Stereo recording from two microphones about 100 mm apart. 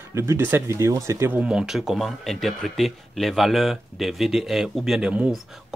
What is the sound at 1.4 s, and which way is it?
Speech, 5° right (ahead or behind).